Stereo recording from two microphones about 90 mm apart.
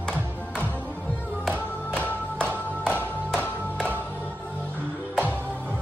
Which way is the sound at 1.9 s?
15° left (ahead or behind).